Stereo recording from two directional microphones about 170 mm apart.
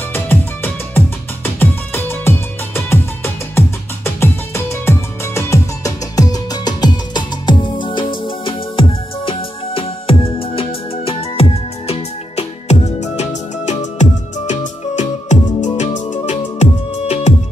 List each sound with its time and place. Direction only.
0.1 s music: 15° left (ahead or behind); by 16.6 s 45° left (ahead or behind)